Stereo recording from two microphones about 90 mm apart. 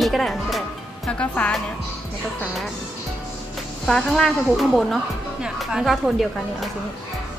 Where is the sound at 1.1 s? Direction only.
15° left (ahead or behind).